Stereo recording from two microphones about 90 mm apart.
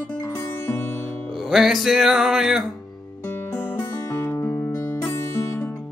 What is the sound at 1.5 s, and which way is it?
Music, centre (ahead or behind).